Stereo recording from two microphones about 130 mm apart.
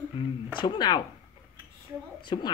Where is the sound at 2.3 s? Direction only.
35° left (ahead or behind).